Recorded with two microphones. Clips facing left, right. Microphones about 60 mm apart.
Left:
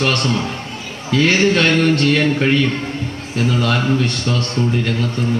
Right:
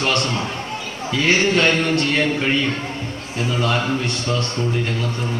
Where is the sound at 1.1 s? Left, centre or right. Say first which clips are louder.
Left 3 dB; left.